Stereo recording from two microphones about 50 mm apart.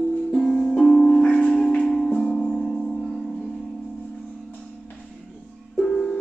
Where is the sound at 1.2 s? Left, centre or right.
Left.